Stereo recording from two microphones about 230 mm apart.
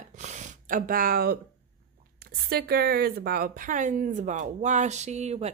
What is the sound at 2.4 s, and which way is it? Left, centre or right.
A woman's voice, right.